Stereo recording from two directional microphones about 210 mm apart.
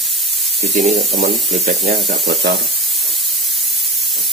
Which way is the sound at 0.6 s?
35° right (ahead or behind).